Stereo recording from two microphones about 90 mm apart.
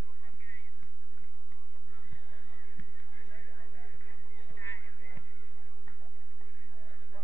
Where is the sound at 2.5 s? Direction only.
60° left (ahead or behind).